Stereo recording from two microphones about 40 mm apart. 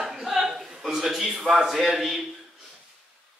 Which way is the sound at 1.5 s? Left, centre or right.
Centre.